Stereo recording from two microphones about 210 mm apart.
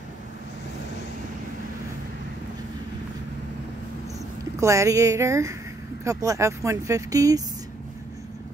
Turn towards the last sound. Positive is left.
turn(degrees=-15)  # may be behind; listen again after turning